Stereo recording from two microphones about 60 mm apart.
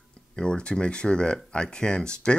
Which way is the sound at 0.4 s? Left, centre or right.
Centre.